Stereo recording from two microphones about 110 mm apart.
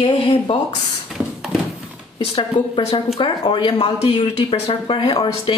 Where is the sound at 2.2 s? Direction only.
50° left (ahead or behind).